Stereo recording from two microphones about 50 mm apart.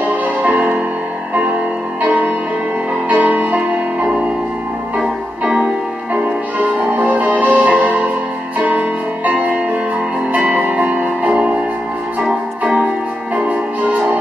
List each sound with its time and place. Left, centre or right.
0.2 s music: right
2.0 s music: right
7.0 s music: right